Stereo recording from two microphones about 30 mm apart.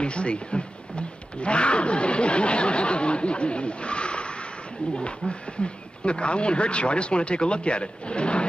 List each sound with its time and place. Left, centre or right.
0.0 s wild animals: left
5.3 s speech: left